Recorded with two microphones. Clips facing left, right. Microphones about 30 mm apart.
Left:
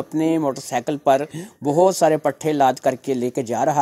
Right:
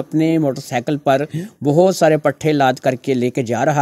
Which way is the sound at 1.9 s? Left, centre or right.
Right.